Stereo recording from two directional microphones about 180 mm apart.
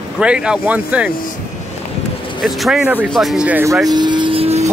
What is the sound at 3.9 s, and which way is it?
Vehicle, 25° right (ahead or behind).